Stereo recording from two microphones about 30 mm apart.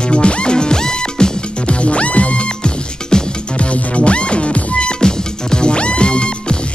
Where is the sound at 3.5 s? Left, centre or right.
Left.